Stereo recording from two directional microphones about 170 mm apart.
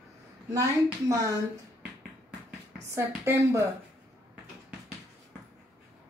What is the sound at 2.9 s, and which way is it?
Speech, 15° right (ahead or behind).